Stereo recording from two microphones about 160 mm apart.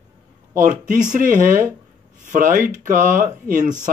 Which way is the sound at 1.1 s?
55° right (ahead or behind).